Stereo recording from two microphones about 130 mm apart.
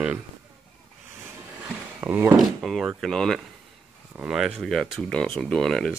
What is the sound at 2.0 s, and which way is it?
Speech, 15° right (ahead or behind).